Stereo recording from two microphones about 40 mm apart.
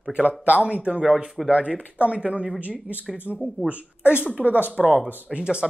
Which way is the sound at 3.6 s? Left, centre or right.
Right.